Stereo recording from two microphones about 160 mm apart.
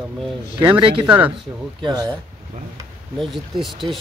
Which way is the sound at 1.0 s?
5° right (ahead or behind).